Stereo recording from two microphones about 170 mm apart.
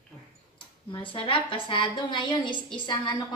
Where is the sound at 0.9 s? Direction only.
30° left (ahead or behind).